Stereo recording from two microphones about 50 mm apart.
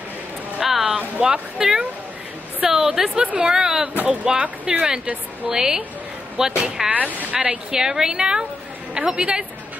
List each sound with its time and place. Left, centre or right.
0.6 s a sound: centre
0.9 s speech: centre
4.1 s speech: right
7.1 s speech: right
7.3 s speech: centre